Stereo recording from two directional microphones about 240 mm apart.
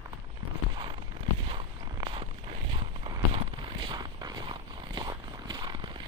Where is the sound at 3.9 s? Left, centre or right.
Centre.